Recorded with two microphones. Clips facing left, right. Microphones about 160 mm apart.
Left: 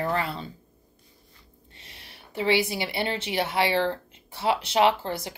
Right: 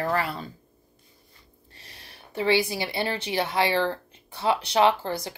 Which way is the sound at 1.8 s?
25° left (ahead or behind).